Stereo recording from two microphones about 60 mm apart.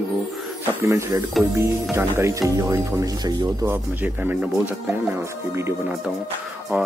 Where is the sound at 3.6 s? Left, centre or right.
Right.